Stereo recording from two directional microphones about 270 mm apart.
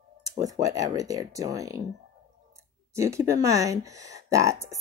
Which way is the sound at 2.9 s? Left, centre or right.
Centre.